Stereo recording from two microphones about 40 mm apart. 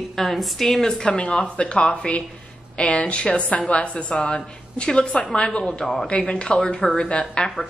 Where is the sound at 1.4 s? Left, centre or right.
Left.